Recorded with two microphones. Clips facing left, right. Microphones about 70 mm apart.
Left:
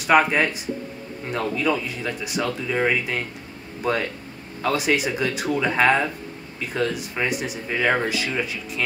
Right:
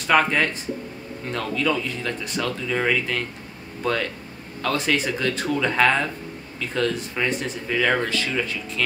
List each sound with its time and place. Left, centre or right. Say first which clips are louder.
0.0 s speech: left 2 dB; centre
4.6 s speech: left 1 dB; centre